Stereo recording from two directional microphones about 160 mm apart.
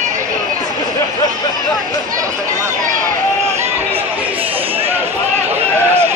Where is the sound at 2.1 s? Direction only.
20° right (ahead or behind).